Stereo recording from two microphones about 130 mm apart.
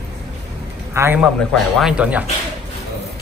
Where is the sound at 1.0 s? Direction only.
20° right (ahead or behind).